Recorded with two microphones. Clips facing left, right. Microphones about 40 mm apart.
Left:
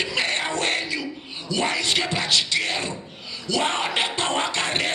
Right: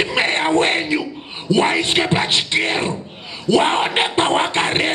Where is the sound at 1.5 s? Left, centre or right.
Right.